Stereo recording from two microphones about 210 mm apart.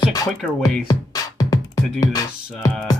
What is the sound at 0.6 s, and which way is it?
Music, 15° left (ahead or behind).